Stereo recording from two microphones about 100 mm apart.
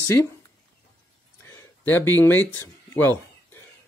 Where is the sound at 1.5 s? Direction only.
20° left (ahead or behind).